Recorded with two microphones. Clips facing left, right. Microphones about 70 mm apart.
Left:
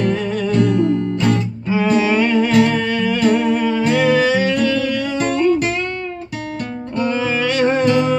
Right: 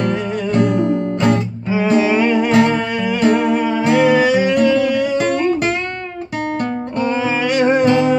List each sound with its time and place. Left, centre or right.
0.7 s music: right
1.7 s music: centre
5.2 s music: right
7.0 s music: centre
7.8 s music: right